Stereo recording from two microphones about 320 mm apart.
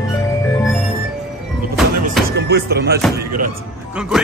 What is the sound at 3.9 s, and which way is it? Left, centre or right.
Speech, centre.